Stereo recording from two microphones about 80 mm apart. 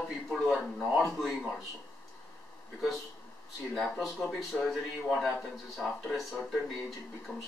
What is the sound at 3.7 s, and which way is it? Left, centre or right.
Speech, centre.